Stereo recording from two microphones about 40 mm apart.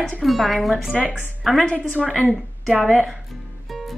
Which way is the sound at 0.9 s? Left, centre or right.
Right.